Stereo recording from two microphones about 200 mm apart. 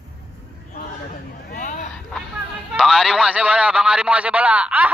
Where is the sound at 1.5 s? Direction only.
40° left (ahead or behind).